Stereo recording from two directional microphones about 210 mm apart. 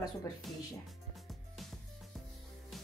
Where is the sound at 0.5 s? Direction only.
Centre (ahead or behind).